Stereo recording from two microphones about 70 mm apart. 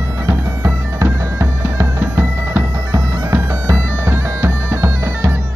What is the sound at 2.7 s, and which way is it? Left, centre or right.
Bagpipes, right.